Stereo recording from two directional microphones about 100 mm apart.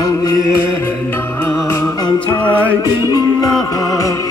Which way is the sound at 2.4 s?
15° left (ahead or behind).